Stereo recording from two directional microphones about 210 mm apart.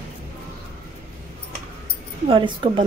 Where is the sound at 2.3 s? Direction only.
25° right (ahead or behind).